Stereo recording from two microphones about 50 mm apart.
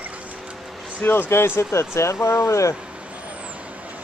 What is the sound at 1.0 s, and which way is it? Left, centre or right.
Speech, left.